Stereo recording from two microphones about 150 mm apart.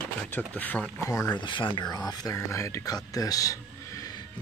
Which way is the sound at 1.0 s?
25° left (ahead or behind).